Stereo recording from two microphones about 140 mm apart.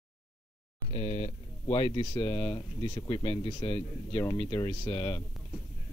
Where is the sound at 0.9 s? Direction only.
45° left (ahead or behind).